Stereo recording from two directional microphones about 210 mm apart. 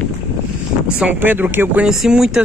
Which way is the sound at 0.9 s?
5° right (ahead or behind).